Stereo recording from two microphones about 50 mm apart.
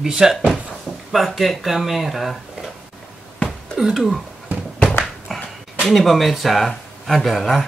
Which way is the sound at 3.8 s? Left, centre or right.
Centre.